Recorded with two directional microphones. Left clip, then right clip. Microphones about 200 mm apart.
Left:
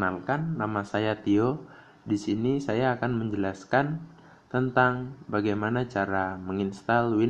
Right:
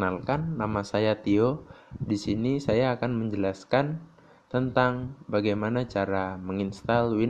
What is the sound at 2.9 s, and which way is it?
Speech, 25° right (ahead or behind).